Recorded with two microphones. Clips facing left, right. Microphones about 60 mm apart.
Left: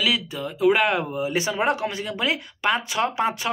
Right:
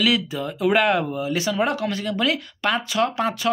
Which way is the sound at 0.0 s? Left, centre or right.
Centre.